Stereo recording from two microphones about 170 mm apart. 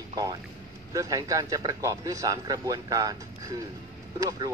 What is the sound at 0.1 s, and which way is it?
A man's voice, 20° right (ahead or behind).